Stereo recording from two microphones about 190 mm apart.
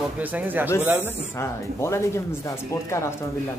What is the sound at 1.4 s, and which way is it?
Speech, 15° left (ahead or behind).